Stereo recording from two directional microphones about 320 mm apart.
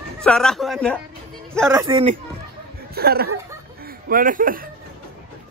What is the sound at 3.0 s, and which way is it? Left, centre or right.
Speech, right.